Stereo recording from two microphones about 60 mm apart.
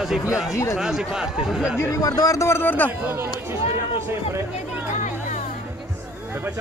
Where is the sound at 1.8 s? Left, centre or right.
Left.